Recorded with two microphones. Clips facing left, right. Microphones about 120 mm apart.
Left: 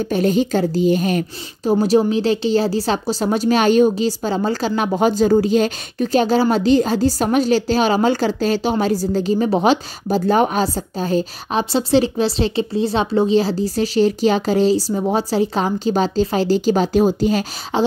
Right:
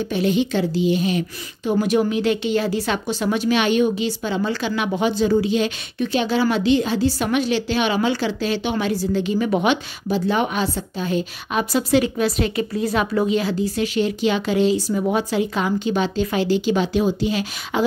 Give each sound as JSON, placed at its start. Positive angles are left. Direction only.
{"t": 0.0, "sound": "a woman's voice", "side_deg": 45}
{"t": 17.7, "sound": "a woman's voice", "side_deg": 30}